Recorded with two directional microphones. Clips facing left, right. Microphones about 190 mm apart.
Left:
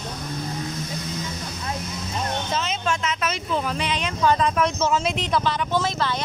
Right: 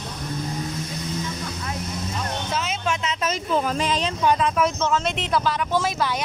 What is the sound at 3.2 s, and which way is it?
Speech, 40° right (ahead or behind).